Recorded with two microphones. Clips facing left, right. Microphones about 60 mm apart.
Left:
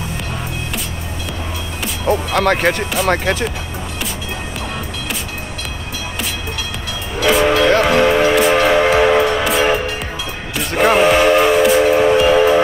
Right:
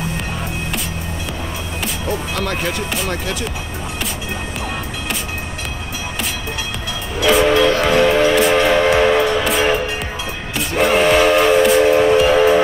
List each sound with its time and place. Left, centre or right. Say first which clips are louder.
2.0 s speech: left 9 dB; left
7.2 s train: even; centre
7.8 s music: left 1 dB; centre
10.8 s steam whistle: left 1 dB; centre